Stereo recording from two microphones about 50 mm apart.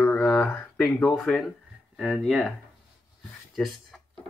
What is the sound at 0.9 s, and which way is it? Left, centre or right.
Speech, left.